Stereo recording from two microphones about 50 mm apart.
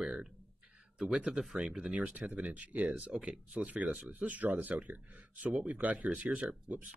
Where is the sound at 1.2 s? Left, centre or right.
Right.